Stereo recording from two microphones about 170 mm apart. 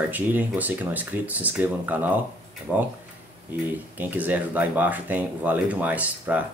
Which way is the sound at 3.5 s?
10° right (ahead or behind).